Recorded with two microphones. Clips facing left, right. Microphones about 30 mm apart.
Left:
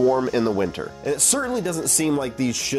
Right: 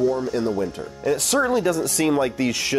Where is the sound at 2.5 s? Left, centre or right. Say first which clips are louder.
Right 2 dB; right.